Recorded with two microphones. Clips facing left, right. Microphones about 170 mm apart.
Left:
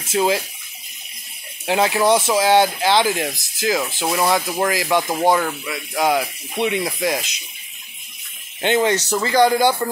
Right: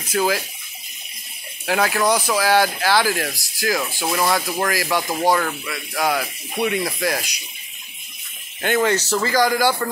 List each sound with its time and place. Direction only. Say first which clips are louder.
0.0 s speech: left 2 dB; 25° left (ahead or behind)
1.7 s speech: left 3 dB; 25° left (ahead or behind)
8.5 s speech: left 1 dB; 20° left (ahead or behind)